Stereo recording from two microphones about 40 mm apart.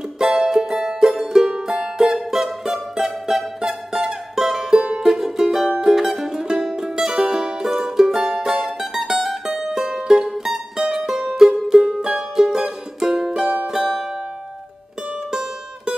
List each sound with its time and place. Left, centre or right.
0.2 s music: centre
8.6 s music: centre
10.8 s music: right